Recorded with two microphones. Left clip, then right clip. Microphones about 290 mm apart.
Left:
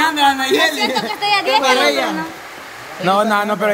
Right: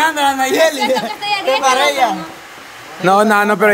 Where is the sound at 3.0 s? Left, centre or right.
Centre.